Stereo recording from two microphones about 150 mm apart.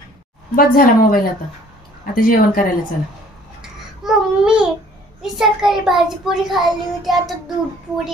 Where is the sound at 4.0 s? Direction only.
5° right (ahead or behind).